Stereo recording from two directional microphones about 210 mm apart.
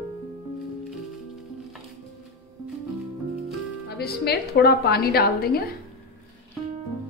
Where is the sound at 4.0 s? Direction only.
50° left (ahead or behind).